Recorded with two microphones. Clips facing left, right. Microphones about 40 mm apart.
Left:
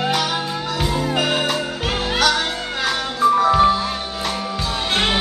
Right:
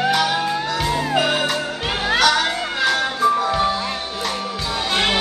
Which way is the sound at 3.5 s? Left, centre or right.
Centre.